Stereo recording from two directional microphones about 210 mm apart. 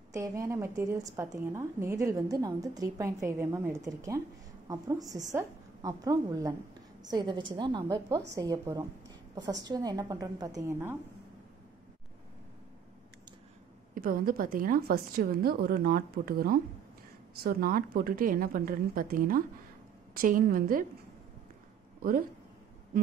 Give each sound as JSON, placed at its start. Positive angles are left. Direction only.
{"t": 0.1, "sound": "a woman's voice", "side_deg": -15}
{"t": 13.9, "sound": "a woman's voice", "side_deg": -40}